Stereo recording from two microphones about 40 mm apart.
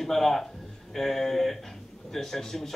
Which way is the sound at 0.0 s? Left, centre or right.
Centre.